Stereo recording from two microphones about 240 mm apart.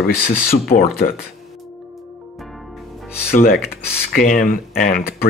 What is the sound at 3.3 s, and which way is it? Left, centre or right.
Speech, left.